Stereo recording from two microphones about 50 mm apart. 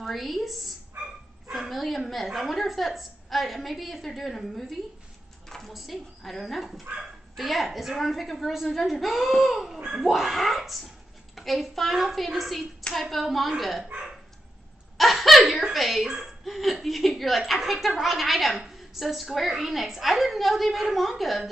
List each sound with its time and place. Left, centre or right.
0.0 s a woman's voice: centre
10.1 s a woman's voice: centre
15.0 s a sound: centre
15.6 s speech: centre
16.4 s chuckle: centre
16.8 s a woman's voice: centre